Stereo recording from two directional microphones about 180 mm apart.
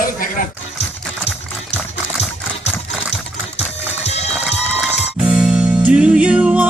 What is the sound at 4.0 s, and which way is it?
Music, 35° left (ahead or behind).